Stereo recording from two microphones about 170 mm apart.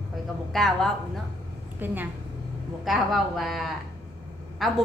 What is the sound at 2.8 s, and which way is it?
A woman's voice, centre (ahead or behind).